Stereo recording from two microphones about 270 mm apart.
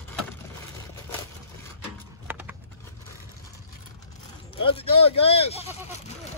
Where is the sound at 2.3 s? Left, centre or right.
Centre.